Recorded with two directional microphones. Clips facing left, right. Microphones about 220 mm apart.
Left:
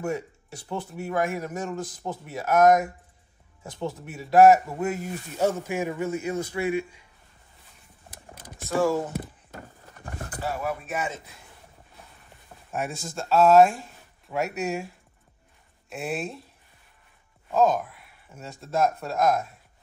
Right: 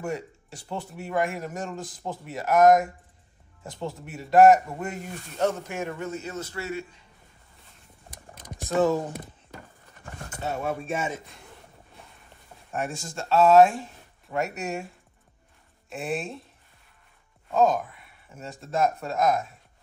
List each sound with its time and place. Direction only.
0.0 s a man's voice: centre (ahead or behind)
8.1 s a sound: 5° left (ahead or behind)
8.5 s speech: 20° right (ahead or behind)
10.3 s speech: 25° right (ahead or behind)
12.7 s a man's voice: centre (ahead or behind)
15.9 s a man's voice: centre (ahead or behind)
17.5 s speech: centre (ahead or behind)